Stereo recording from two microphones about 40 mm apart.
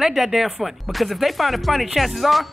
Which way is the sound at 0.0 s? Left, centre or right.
Centre.